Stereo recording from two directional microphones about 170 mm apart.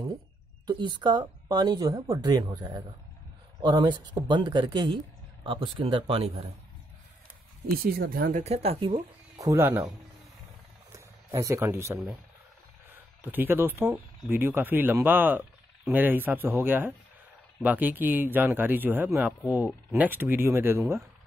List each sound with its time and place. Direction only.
0.7 s speech: 25° right (ahead or behind)
7.7 s speech: 60° right (ahead or behind); by 9.0 s 35° right (ahead or behind)
9.4 s speech: 15° right (ahead or behind)
10.9 s a sound: 15° right (ahead or behind)
12.9 s speech: 10° right (ahead or behind)